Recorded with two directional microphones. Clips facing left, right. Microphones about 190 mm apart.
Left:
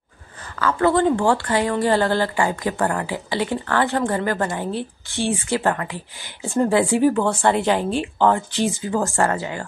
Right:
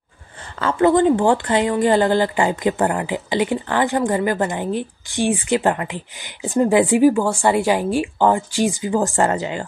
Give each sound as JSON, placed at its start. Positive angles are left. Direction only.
{"t": 0.6, "sound": "speech", "side_deg": -25}